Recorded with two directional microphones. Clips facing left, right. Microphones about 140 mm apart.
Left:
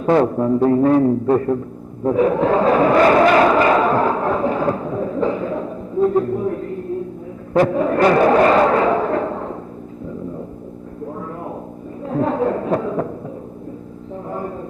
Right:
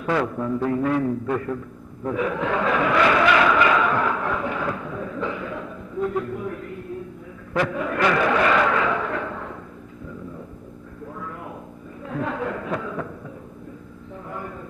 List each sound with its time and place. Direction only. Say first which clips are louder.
0.0 s a man's voice: left 8 dB; 35° left (ahead or behind)
2.0 s chuckle: left 9 dB; 35° left (ahead or behind)
7.5 s a sound: left 8 dB; 35° left (ahead or behind)
12.0 s chuckle: left 9 dB; 35° left (ahead or behind)